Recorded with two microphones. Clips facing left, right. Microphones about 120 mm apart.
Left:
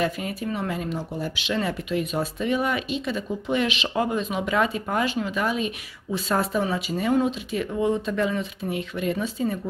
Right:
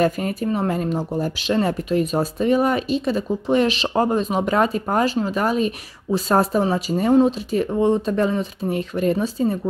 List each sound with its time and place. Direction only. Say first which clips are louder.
0.0 s speech: right 6 dB; 45° right (ahead or behind)